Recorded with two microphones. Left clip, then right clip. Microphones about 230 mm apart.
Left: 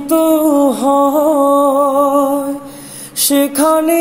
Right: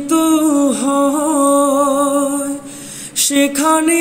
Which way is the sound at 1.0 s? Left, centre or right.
Right.